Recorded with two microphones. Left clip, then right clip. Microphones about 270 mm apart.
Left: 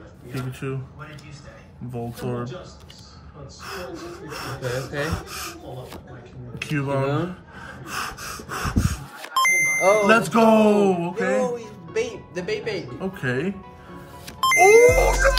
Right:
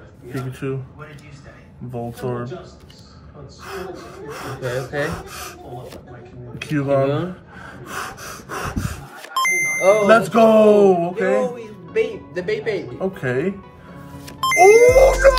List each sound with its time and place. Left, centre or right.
0.6 s speech: centre
2.0 s speech: centre
3.6 s speech: centre
9.3 s beep: centre
9.6 s a sound: left
10.0 s speech: centre
11.4 s speech: centre
14.2 s music: centre